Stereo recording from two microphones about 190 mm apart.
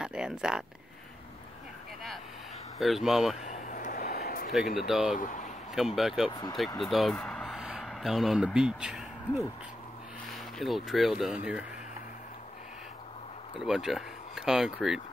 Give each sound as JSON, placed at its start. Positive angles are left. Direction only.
{"t": 0.0, "sound": "a sound", "side_deg": -5}
{"t": 2.8, "sound": "speech", "side_deg": 0}
{"t": 3.4, "sound": "a sound", "side_deg": 40}
{"t": 4.7, "sound": "speech", "side_deg": -5}
{"t": 5.1, "sound": "speech", "side_deg": 40}
{"t": 5.8, "sound": "speech", "side_deg": 0}
{"t": 10.6, "sound": "speech", "side_deg": 0}
{"t": 13.7, "sound": "speech", "side_deg": 0}